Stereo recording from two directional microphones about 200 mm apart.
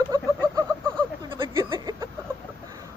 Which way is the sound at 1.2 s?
25° right (ahead or behind).